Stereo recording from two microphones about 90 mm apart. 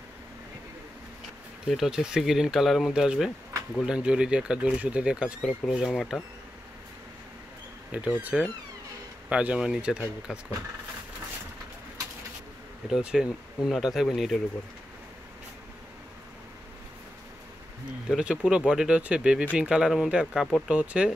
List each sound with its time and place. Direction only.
1.7 s speech: 5° right (ahead or behind)
7.9 s speech: 15° right (ahead or behind)
12.8 s speech: 5° right (ahead or behind)
18.0 s speech: 10° right (ahead or behind)